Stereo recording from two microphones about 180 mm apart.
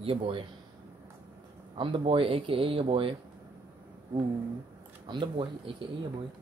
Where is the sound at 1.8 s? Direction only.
30° right (ahead or behind).